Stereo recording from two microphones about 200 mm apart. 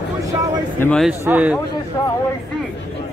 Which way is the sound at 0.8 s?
5° left (ahead or behind).